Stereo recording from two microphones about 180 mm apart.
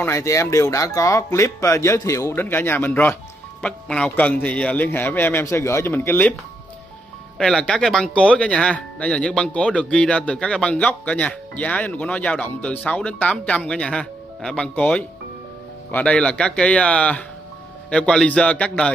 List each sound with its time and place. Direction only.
0.0 s speech: 15° left (ahead or behind)
7.3 s speech: 5° left (ahead or behind)